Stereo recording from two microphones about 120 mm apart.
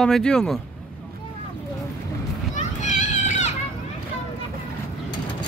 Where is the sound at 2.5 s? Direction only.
90° left.